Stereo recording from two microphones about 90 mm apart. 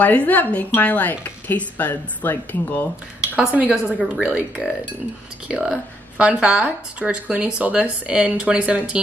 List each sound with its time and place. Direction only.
0.0 s speech: 20° left (ahead or behind)
3.3 s speech: 15° right (ahead or behind)